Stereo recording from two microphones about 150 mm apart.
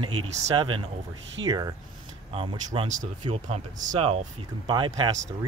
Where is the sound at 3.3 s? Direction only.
50° right (ahead or behind).